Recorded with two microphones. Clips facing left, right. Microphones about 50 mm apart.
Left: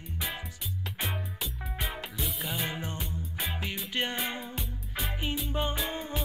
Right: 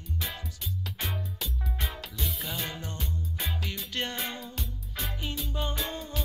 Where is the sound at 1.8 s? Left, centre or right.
Centre.